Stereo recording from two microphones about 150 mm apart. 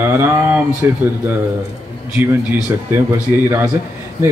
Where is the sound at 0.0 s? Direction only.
15° right (ahead or behind).